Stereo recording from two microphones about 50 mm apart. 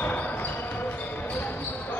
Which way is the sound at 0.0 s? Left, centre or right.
Left.